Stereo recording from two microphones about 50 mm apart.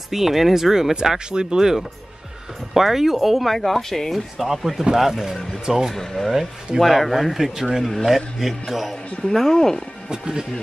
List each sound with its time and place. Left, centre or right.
0.1 s speech: centre
5.9 s speech: centre
9.3 s speech: centre
10.0 s speech: centre